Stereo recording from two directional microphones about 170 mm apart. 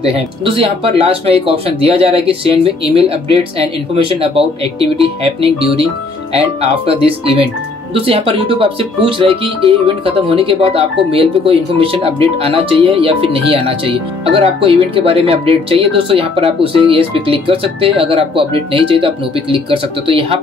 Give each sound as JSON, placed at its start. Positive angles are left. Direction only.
{"t": 0.0, "sound": "speech", "side_deg": -35}